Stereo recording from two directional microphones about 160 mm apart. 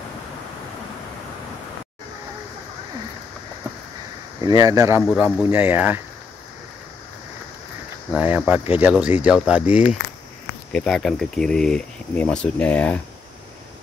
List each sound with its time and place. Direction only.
4.4 s speech: 20° right (ahead or behind)
8.1 s cricket: 10° right (ahead or behind)
8.5 s speech: 10° right (ahead or behind)
10.7 s speech: 5° left (ahead or behind)